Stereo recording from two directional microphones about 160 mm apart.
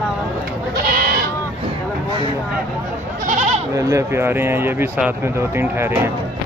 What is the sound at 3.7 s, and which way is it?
Speech, 20° right (ahead or behind).